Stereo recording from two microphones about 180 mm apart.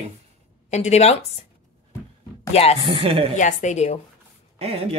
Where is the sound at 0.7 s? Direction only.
40° left (ahead or behind).